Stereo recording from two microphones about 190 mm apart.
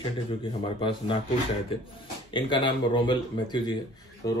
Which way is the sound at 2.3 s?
25° left (ahead or behind).